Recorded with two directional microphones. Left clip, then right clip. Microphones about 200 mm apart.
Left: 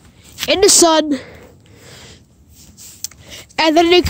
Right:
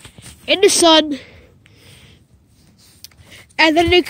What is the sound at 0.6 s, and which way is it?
Speech, 65° left (ahead or behind).